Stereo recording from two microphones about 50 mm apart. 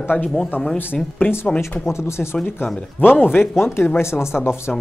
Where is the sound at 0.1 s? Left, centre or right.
Left.